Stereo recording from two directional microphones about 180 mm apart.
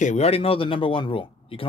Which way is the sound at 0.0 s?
40° left (ahead or behind).